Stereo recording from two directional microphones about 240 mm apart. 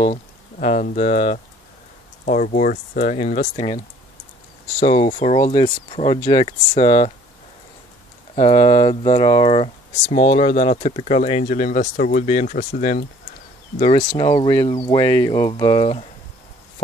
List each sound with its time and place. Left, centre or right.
0.0 s speech: left
4.8 s speech: left
8.4 s speech: left
13.7 s speech: left